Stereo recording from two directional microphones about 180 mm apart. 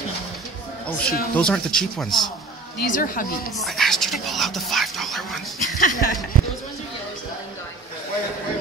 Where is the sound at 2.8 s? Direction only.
50° left (ahead or behind).